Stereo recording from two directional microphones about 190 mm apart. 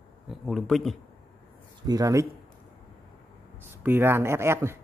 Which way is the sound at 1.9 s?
15° right (ahead or behind).